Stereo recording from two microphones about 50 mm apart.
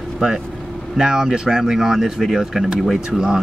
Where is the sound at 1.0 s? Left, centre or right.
Centre.